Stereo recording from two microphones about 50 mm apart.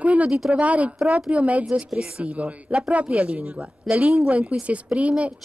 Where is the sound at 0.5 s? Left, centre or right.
Right.